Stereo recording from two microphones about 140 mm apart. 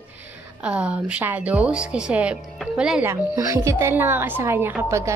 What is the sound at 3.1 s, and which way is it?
Speech, 20° right (ahead or behind).